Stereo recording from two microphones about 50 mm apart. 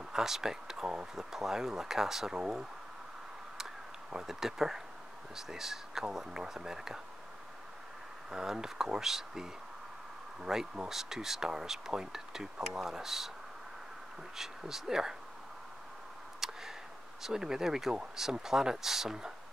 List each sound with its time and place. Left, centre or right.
0.1 s speech: centre
3.5 s a sound: centre
5.3 s speech: centre
8.3 s speech: centre
14.3 s speech: centre
16.3 s a sound: centre
17.2 s speech: centre